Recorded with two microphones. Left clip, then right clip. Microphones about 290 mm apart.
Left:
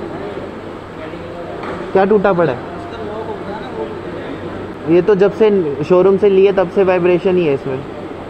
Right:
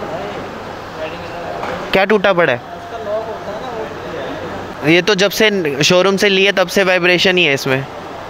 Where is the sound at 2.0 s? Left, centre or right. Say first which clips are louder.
Even; right.